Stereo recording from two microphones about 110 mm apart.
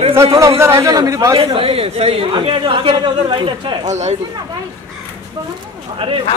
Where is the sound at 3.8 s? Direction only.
90° right.